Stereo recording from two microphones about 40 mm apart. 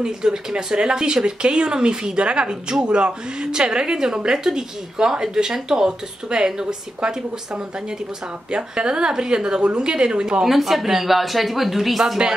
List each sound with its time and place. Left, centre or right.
0.0 s speech: centre
10.4 s speech: centre